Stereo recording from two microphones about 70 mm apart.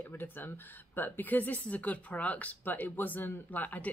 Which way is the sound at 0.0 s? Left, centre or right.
Left.